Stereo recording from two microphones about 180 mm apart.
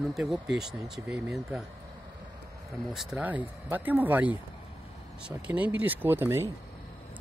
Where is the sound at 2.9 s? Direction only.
5° right (ahead or behind).